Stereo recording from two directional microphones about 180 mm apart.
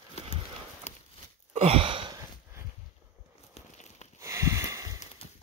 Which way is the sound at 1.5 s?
35° right (ahead or behind).